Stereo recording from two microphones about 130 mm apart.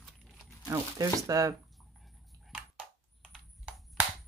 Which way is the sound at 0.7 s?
25° right (ahead or behind).